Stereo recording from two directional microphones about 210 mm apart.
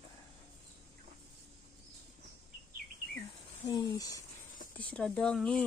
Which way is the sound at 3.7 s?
15° left (ahead or behind).